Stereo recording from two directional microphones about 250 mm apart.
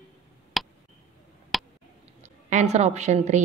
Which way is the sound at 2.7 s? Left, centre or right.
Right.